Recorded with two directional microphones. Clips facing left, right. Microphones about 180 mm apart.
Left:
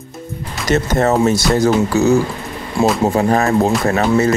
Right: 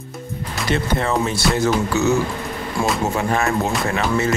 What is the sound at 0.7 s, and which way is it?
Speech, 45° left (ahead or behind).